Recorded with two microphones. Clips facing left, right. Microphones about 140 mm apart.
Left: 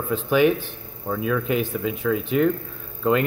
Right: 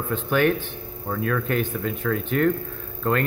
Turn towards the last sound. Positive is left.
turn(degrees=10)  # may be behind; listen again after turning